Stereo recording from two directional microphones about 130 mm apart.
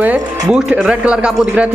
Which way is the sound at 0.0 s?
10° right (ahead or behind).